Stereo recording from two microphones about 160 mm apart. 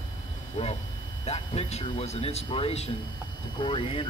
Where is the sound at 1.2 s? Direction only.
40° left (ahead or behind).